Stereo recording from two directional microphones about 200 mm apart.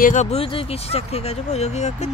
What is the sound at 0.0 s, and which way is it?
Speech, 35° left (ahead or behind).